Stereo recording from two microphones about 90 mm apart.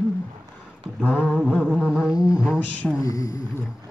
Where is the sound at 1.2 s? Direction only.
10° right (ahead or behind).